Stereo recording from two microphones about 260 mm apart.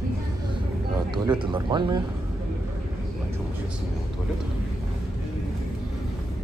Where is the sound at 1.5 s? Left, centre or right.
Centre.